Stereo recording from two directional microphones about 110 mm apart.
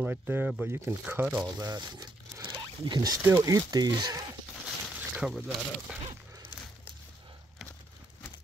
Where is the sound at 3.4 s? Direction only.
35° right (ahead or behind).